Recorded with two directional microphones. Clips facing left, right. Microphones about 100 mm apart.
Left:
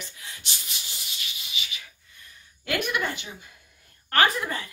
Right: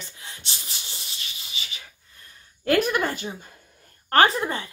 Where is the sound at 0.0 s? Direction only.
30° right (ahead or behind).